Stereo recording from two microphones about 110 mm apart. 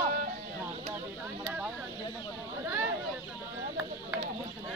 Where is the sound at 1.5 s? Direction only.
10° right (ahead or behind).